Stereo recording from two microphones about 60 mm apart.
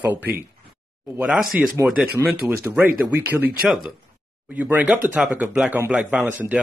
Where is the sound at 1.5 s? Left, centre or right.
Right.